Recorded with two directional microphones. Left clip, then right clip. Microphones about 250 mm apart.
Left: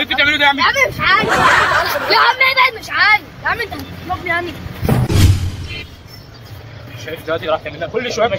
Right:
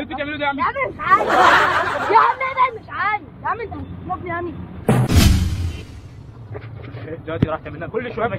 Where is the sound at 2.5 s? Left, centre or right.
Centre.